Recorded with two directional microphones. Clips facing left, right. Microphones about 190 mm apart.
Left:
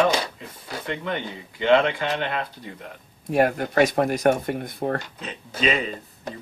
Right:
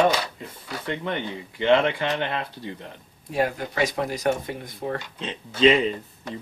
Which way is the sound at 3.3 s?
55° left (ahead or behind).